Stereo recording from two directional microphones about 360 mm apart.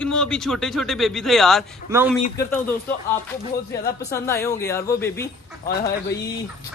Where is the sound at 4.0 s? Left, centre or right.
Centre.